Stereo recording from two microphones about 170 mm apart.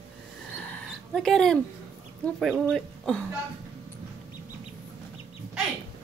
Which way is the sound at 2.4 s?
10° right (ahead or behind).